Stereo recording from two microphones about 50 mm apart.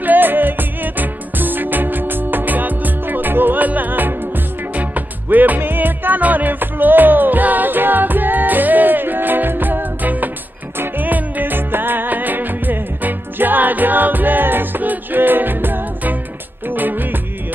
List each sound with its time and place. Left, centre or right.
0.0 s music: right